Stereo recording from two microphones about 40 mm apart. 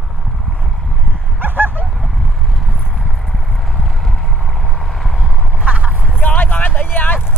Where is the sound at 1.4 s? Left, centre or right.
Right.